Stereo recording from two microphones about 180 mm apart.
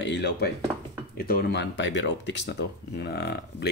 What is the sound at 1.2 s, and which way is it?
Speech, 60° left (ahead or behind).